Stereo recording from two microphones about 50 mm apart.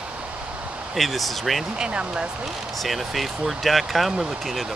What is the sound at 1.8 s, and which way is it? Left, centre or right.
Speech, right.